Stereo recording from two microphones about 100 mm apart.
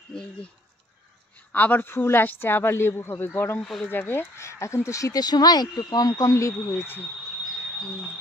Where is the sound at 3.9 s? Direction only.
20° left (ahead or behind).